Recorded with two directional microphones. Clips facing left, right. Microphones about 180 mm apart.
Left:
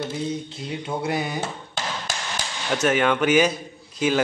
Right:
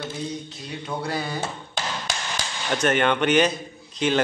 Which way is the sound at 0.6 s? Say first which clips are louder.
Left 3 dB; 20° left (ahead or behind).